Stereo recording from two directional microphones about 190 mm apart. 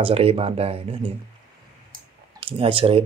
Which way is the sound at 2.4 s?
30° right (ahead or behind).